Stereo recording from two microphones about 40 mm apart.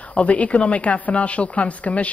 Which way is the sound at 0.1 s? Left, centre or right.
Left.